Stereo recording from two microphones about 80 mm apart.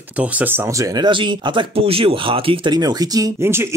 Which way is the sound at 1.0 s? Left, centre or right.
Right.